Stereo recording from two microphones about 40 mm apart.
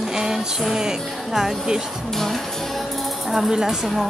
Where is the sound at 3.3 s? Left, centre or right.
Centre.